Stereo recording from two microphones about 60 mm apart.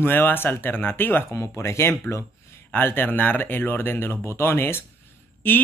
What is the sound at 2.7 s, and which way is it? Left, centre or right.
Speech, left.